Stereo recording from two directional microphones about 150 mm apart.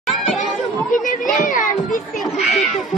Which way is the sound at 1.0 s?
60° left (ahead or behind).